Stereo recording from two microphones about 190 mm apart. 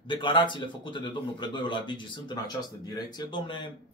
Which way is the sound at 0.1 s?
25° left (ahead or behind).